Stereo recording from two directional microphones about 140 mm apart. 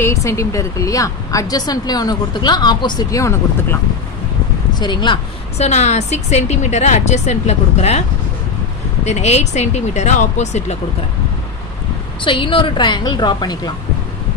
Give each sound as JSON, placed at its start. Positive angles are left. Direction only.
{"t": 0.0, "sound": "a woman's voice", "side_deg": 20}
{"t": 4.7, "sound": "a woman's voice", "side_deg": 35}
{"t": 5.6, "sound": "a woman's voice", "side_deg": 55}
{"t": 9.0, "sound": "a woman's voice", "side_deg": 50}
{"t": 12.2, "sound": "a woman's voice", "side_deg": 35}